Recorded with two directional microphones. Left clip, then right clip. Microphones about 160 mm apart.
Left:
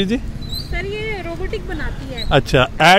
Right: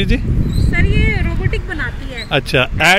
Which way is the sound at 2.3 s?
10° left (ahead or behind).